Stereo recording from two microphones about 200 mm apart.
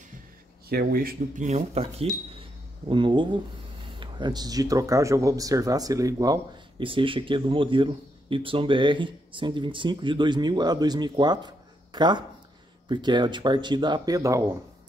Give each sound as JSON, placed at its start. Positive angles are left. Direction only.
{"t": 0.7, "sound": "speech", "side_deg": -50}